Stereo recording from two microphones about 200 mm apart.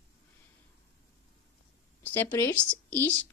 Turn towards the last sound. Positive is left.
turn(degrees=10)  # may be behind; listen again after turning